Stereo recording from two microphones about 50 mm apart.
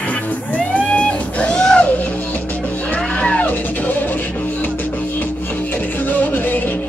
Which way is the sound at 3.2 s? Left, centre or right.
Left.